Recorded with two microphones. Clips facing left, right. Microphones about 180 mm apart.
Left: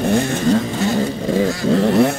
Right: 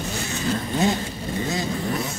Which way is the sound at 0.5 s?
90° left.